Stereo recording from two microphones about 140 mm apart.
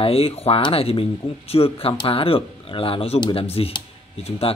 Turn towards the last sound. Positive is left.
turn(degrees=45)  # may be behind; listen again after turning